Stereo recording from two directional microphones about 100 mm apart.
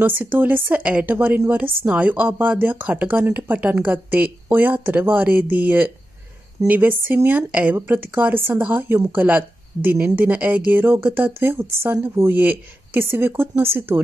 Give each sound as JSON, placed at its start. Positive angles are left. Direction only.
{"t": 0.0, "sound": "speech", "side_deg": -20}